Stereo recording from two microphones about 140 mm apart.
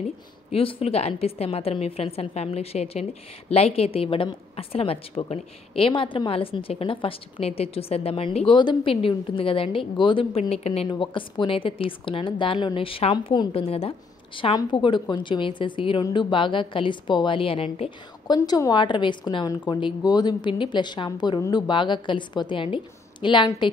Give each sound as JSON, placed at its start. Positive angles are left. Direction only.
{"t": 0.5, "sound": "a woman's voice", "side_deg": 40}
{"t": 10.9, "sound": "a woman's voice", "side_deg": 35}
{"t": 18.2, "sound": "a woman's voice", "side_deg": 30}